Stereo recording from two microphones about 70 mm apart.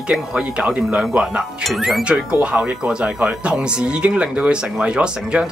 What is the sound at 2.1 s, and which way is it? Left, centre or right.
Speech, centre.